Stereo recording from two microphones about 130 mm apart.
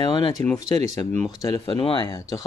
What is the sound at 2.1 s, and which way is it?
Speech, 25° left (ahead or behind).